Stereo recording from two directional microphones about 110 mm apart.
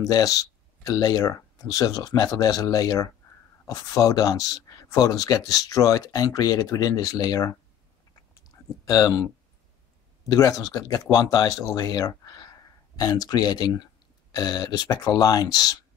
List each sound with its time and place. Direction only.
0.0 s speech: 30° left (ahead or behind)
8.5 s a sound: 35° left (ahead or behind)
10.2 s speech: 35° left (ahead or behind)